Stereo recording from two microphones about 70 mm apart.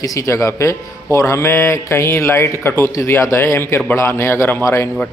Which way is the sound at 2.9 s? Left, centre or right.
Left.